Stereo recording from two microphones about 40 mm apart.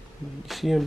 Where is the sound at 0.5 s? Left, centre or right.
Centre.